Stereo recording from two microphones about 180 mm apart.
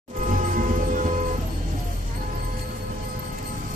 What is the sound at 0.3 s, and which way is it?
Music, 45° right (ahead or behind).